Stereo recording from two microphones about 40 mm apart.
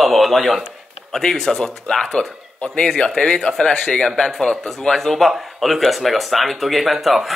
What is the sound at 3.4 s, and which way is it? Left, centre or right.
Speech, left.